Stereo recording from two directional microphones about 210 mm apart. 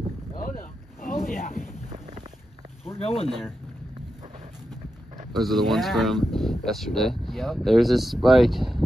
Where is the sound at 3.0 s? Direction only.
30° left (ahead or behind).